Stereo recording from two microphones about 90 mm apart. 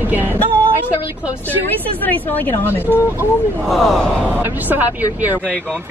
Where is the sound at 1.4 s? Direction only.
20° left (ahead or behind).